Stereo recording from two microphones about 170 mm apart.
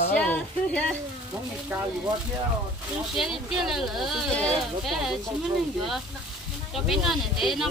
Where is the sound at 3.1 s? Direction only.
Centre (ahead or behind).